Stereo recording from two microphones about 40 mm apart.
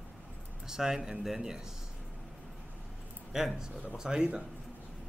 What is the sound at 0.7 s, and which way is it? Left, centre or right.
Speech, centre.